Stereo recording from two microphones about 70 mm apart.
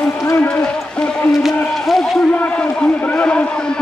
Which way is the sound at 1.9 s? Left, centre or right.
Centre.